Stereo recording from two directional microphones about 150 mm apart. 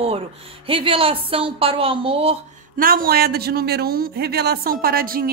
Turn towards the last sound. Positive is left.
turn(degrees=-75)  # may be behind; listen again after turning